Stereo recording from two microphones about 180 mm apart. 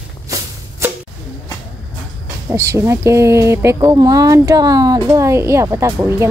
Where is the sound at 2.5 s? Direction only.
15° right (ahead or behind).